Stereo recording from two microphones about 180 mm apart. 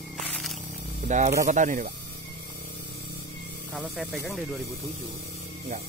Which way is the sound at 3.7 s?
Centre (ahead or behind).